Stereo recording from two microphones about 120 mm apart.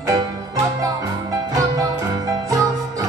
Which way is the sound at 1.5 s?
30° right (ahead or behind).